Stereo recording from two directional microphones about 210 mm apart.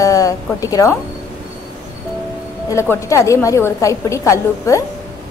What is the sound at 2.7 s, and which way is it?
A woman's voice, 15° left (ahead or behind).